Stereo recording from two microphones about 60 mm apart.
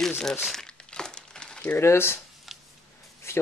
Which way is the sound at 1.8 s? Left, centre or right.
Left.